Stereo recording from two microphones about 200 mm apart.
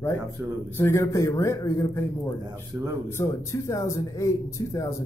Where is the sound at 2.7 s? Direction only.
15° right (ahead or behind).